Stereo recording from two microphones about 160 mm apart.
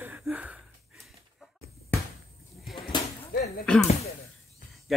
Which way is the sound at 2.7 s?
Centre (ahead or behind).